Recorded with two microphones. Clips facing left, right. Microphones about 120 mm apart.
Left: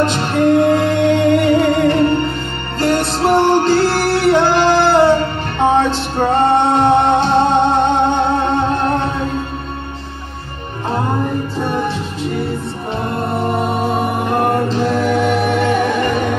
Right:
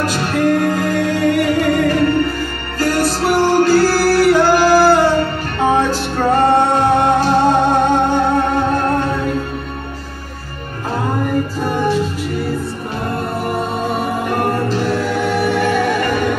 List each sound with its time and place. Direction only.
0.0 s music: 25° left (ahead or behind)
12.2 s music: 25° left (ahead or behind)
14.7 s music: 20° left (ahead or behind)